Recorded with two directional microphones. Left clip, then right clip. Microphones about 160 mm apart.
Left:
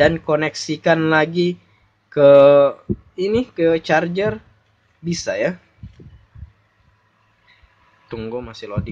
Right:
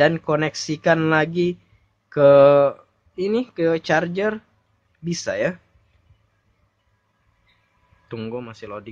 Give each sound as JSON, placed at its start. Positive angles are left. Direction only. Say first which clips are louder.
{"t": 0.0, "sound": "speech", "louder": "left 2 dB", "side_deg": -20}
{"t": 8.1, "sound": "speech", "louder": "left 3 dB", "side_deg": -20}